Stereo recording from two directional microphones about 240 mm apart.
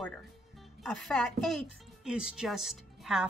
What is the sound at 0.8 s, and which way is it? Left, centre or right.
Speech, centre.